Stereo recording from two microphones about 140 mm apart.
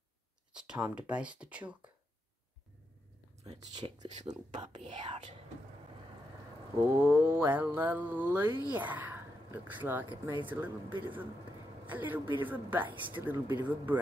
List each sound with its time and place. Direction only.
0.5 s mantra: 5° right (ahead or behind)
3.7 s speech: 30° right (ahead or behind)
4.1 s speech: 55° right (ahead or behind)
4.6 s speech: 35° right (ahead or behind)
7.0 s mantra: 15° right (ahead or behind)
8.7 s speech: 10° right (ahead or behind)
10.4 s mantra: 10° right (ahead or behind)
10.9 s speech: 35° right (ahead or behind)
11.9 s mantra: 15° right (ahead or behind)